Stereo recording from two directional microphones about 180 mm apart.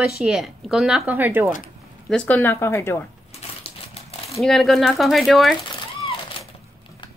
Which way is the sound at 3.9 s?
35° left (ahead or behind).